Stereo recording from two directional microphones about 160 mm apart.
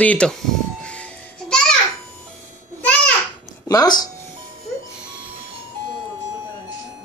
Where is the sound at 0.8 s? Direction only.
5° left (ahead or behind).